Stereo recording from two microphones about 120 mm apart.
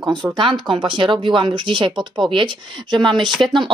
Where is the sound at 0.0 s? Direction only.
40° right (ahead or behind).